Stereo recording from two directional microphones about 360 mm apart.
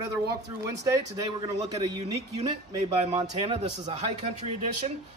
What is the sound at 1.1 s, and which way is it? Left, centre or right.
Speech, centre.